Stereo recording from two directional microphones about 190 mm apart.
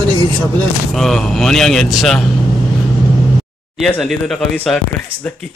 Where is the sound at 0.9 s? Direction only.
Centre (ahead or behind).